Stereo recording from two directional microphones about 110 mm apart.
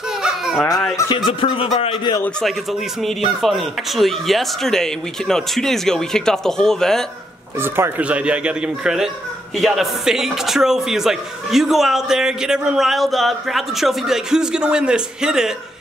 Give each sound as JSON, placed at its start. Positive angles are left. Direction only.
{"t": 0.2, "sound": "baby cry", "side_deg": -5}
{"t": 0.9, "sound": "speech", "side_deg": 45}
{"t": 3.3, "sound": "speech", "side_deg": 0}
{"t": 7.6, "sound": "speech", "side_deg": -20}